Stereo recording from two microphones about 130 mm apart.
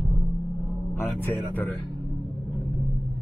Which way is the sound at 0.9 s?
20° left (ahead or behind).